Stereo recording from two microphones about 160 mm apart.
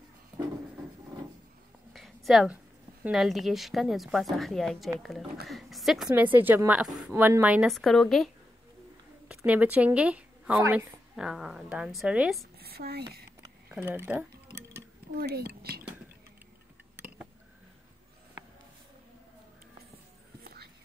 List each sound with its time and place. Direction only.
2.0 s a sound: centre (ahead or behind)
2.5 s a woman's voice: 5° right (ahead or behind)
6.1 s a woman's voice: 10° right (ahead or behind)
9.4 s a woman's voice: 10° right (ahead or behind)
11.1 s a woman's voice: 5° right (ahead or behind)
12.5 s a sound: 75° right (ahead or behind)
13.7 s speech: 10° right (ahead or behind)
15.1 s speech: 75° right (ahead or behind)
17.0 s a sound: 15° right (ahead or behind)
20.4 s whispering: 80° right